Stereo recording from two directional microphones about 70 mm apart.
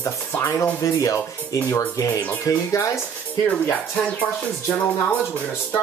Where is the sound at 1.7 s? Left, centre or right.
Left.